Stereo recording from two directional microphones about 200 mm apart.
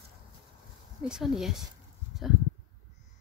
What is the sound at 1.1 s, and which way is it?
Speech, centre (ahead or behind).